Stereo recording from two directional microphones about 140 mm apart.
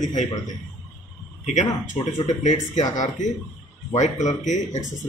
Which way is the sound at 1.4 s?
60° left (ahead or behind).